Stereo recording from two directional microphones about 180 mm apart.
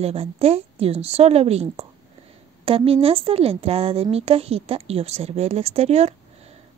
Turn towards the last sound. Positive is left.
turn(degrees=-35)  # may be behind; listen again after turning